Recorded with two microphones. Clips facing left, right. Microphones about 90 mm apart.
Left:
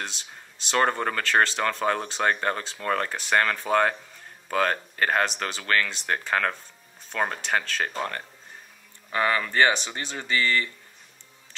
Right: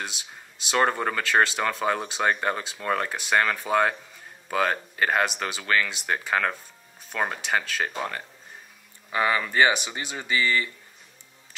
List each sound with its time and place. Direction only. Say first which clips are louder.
0.0 s speech: even; 10° right (ahead or behind)